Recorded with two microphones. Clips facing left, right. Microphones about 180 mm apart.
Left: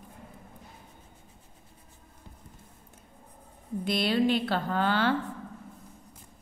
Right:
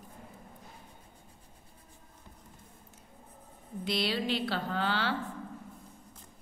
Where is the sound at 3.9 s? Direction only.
50° left (ahead or behind).